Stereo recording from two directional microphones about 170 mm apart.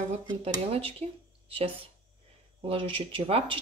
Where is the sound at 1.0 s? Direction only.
35° right (ahead or behind).